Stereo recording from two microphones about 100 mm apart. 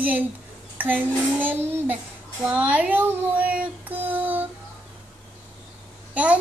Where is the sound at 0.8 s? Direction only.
20° right (ahead or behind).